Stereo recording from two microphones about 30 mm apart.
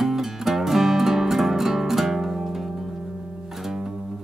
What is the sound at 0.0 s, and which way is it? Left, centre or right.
Music, centre.